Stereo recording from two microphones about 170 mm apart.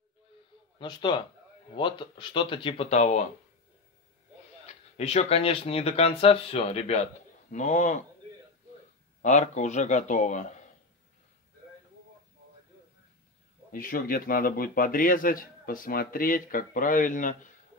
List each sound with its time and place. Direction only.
0.7 s speech: 30° left (ahead or behind); by 3.3 s 45° left (ahead or behind)
4.6 s a man's voice: 40° left (ahead or behind)
9.2 s a man's voice: 45° left (ahead or behind)
13.7 s a man's voice: 55° left (ahead or behind)